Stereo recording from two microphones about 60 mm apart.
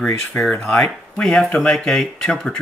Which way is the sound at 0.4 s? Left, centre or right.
Centre.